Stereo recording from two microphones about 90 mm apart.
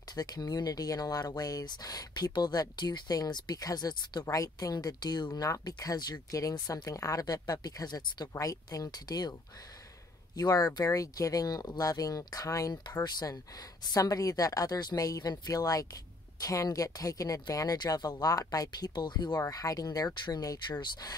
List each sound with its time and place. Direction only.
0.1 s speech: 45° left (ahead or behind)
10.3 s speech: 45° left (ahead or behind)
19.5 s speech: 40° left (ahead or behind)